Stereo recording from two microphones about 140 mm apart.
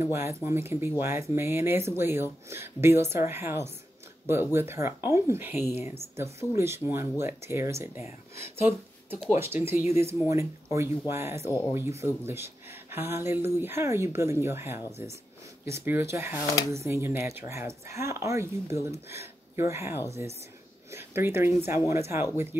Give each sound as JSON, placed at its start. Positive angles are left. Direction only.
{"t": 0.0, "sound": "speech", "side_deg": -20}
{"t": 9.3, "sound": "speech", "side_deg": -15}